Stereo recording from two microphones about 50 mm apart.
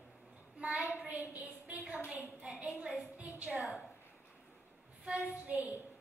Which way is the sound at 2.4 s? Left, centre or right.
Right.